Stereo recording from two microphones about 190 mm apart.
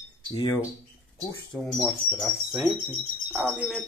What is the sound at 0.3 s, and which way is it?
Speech, 20° left (ahead or behind).